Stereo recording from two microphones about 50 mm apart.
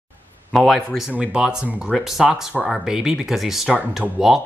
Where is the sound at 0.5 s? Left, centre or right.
Centre.